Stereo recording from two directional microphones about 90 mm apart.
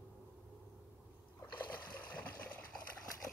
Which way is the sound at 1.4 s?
20° left (ahead or behind).